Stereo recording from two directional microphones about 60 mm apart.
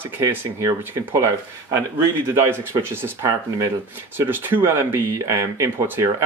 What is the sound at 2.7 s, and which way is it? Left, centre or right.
Speech, right.